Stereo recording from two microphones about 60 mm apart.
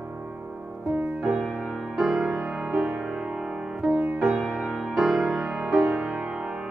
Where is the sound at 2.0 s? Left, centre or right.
Centre.